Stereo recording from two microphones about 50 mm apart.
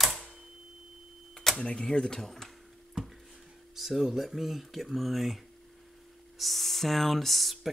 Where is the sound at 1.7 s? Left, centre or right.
Centre.